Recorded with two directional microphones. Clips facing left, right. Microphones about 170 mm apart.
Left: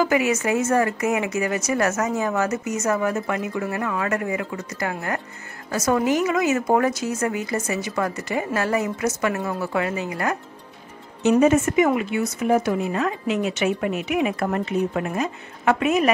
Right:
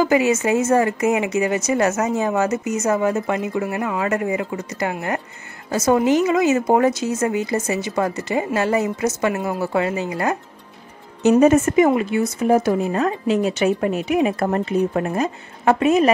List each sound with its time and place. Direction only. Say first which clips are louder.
0.0 s speech: right 3 dB; 25° right (ahead or behind)
11.2 s speech: right 3 dB; 40° right (ahead or behind)